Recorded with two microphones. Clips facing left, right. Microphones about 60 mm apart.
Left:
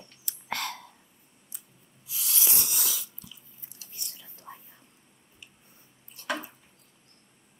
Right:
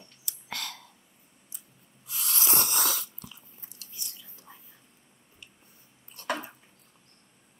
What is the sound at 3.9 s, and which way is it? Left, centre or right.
Whispering, left.